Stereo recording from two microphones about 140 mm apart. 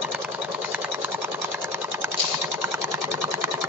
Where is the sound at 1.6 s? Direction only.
15° right (ahead or behind).